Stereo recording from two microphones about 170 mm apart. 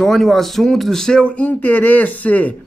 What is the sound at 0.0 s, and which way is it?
Speech, centre (ahead or behind).